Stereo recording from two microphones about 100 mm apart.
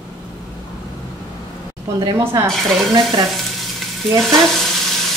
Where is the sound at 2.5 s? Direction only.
5° left (ahead or behind).